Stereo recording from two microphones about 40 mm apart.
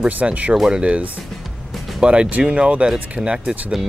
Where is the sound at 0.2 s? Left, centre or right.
Right.